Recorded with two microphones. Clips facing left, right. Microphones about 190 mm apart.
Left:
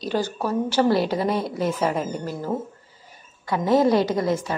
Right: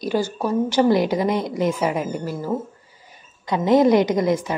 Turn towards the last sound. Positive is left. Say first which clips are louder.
# right 3 dB
turn(degrees=-15)  # may be behind; listen again after turning